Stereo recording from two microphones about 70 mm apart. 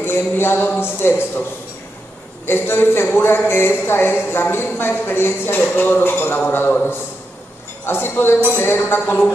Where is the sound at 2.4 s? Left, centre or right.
Left.